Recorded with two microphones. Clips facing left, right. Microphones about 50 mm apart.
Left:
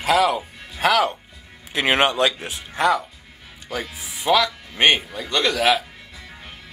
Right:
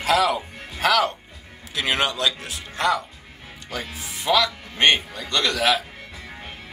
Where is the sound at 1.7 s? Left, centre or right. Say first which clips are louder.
Left 5 dB; left.